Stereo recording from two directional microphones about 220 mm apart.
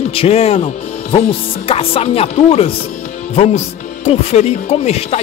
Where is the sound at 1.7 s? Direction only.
25° left (ahead or behind).